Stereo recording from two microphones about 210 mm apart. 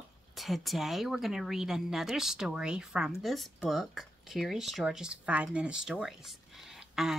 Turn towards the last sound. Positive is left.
turn(degrees=0)  # may be behind; listen again after turning